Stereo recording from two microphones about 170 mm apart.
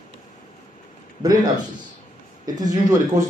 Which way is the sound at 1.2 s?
25° right (ahead or behind).